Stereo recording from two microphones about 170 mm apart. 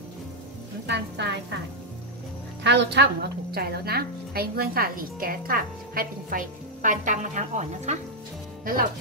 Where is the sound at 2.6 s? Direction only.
85° right; by 7.9 s 45° right (ahead or behind).